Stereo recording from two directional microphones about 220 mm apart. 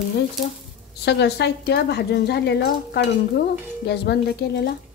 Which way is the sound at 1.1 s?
50° left (ahead or behind).